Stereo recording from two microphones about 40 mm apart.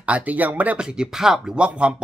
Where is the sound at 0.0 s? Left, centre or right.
Right.